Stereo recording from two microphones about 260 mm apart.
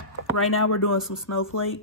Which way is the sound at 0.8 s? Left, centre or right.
Left.